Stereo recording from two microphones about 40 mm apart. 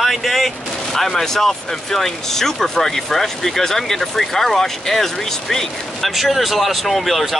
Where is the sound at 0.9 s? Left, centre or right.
Centre.